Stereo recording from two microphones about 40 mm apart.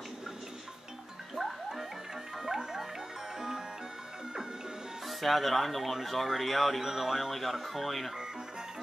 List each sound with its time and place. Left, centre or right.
1.3 s music: centre
5.0 s speech: centre